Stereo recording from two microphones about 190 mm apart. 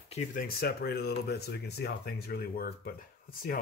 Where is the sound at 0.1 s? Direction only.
45° left (ahead or behind).